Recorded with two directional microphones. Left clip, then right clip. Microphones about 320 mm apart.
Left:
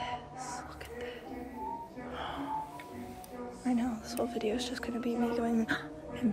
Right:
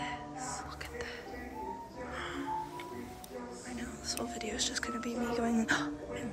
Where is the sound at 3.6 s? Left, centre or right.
Centre.